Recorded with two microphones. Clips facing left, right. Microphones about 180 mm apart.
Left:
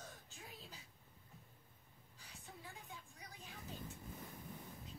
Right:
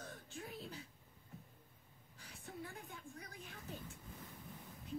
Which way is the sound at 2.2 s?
60° right (ahead or behind).